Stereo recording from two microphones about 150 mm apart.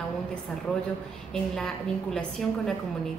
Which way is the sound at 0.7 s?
5° left (ahead or behind).